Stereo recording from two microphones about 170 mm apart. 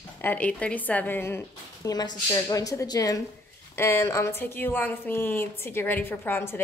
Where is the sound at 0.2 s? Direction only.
10° left (ahead or behind).